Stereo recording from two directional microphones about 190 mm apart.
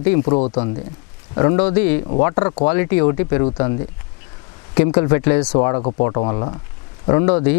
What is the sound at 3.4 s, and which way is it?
Speech, 30° left (ahead or behind).